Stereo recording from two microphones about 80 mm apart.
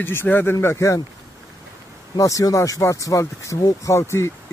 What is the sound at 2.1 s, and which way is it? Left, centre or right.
Speech, left.